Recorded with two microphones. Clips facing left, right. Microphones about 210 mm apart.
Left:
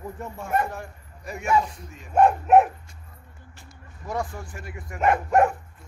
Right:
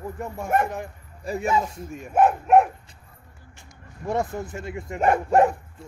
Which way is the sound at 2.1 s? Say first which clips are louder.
Even; 5° right (ahead or behind).